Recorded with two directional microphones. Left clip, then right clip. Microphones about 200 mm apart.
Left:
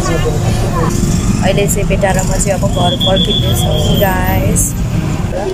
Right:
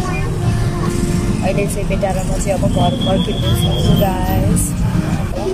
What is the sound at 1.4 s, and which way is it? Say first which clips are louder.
Speech: left 6 dB; 5° right (ahead or behind).